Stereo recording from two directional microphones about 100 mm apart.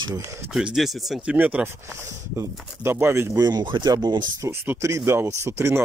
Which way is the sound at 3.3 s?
35° right (ahead or behind).